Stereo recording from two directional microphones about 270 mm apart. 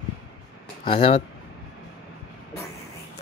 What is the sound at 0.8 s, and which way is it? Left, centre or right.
Speech, centre.